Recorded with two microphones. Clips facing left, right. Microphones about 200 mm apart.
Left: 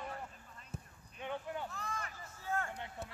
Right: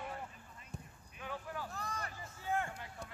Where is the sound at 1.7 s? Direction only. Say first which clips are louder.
Even; 35° right (ahead or behind).